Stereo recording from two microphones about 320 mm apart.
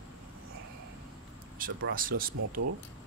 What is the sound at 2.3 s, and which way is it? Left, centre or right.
Speech, right.